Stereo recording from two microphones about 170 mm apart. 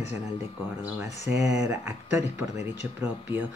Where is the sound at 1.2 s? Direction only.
15° right (ahead or behind).